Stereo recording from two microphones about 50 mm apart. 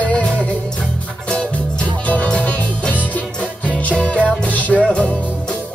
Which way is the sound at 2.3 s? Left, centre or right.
Left.